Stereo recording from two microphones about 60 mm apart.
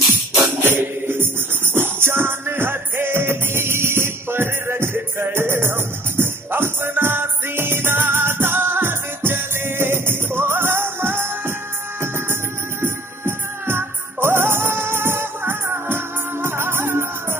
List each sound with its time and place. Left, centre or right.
0.3 s music: right
12.8 s music: right